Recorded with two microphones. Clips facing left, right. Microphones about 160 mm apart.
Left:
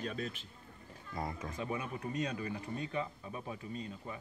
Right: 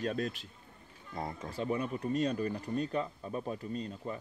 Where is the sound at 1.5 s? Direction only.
35° right (ahead or behind).